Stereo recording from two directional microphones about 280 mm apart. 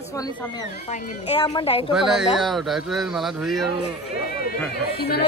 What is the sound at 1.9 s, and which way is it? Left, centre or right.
Speech, centre.